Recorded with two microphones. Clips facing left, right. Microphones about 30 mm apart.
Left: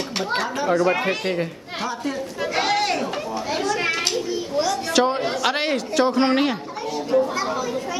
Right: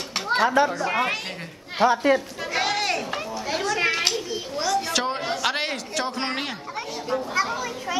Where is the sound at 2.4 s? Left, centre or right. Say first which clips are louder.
Left 3 dB; centre.